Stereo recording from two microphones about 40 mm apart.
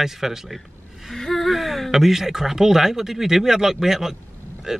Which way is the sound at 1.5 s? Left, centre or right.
Centre.